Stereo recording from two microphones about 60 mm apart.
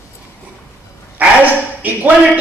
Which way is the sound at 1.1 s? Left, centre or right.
Right.